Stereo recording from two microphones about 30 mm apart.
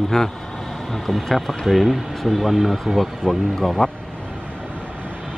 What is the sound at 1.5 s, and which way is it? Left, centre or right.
Speech, centre.